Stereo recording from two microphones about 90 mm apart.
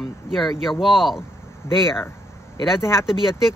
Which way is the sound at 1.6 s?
30° left (ahead or behind).